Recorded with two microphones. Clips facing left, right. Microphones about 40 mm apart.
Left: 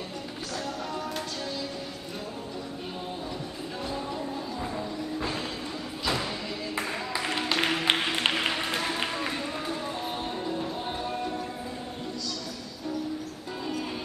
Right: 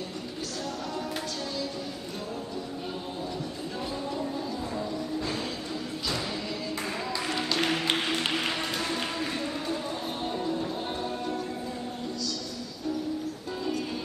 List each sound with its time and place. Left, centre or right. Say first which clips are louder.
4.6 s music: even; centre
6.7 s music: left 3 dB; centre